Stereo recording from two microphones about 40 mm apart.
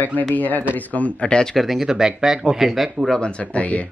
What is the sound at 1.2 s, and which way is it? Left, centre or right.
Speech, left.